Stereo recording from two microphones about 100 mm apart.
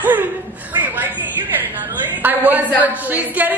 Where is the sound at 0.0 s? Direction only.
20° right (ahead or behind).